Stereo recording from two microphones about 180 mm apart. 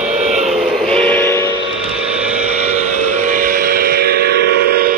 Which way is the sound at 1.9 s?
5° right (ahead or behind).